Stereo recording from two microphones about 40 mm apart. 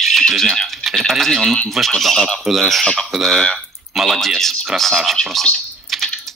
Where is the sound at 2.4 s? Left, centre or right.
Centre.